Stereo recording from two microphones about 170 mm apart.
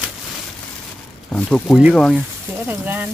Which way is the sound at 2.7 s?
10° right (ahead or behind).